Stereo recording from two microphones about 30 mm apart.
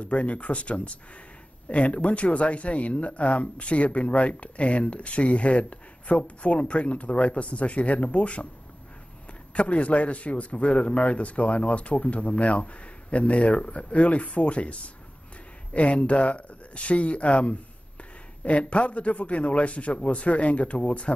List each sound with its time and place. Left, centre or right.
0.0 s speech: left
9.5 s speech: left